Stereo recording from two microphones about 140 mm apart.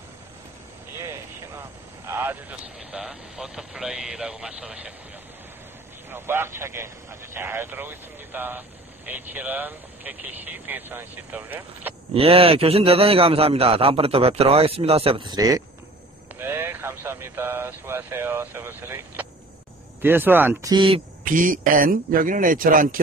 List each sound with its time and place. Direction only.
0.9 s a sound: 20° right (ahead or behind)
2.0 s vehicle: 15° right (ahead or behind)
2.9 s speech: 5° right (ahead or behind)
6.0 s speech: 15° right (ahead or behind)
12.1 s a man's voice: 45° right (ahead or behind); by 15.6 s 25° right (ahead or behind)
16.3 s speech: 15° right (ahead or behind)
20.7 s speech: 40° right (ahead or behind)
21.2 s speech: 75° right (ahead or behind)